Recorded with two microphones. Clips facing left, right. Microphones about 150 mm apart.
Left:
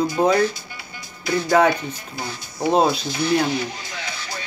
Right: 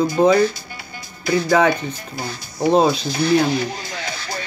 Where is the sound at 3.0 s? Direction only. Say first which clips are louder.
Right 3 dB; 35° right (ahead or behind).